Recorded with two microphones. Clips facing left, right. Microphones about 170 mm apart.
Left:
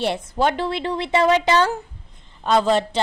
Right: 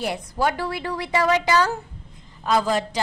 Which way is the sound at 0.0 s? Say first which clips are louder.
Left 3 dB; 25° left (ahead or behind).